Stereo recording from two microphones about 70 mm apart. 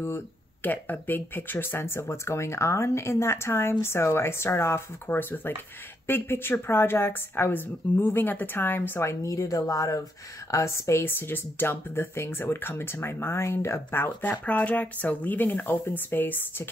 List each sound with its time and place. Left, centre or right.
0.7 s speech: left
9.2 s speech: left
10.5 s speech: left